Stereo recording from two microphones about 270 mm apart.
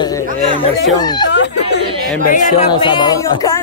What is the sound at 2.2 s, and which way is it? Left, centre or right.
Speech, left.